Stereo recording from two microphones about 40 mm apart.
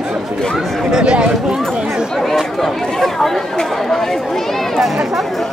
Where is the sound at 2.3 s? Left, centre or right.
Centre.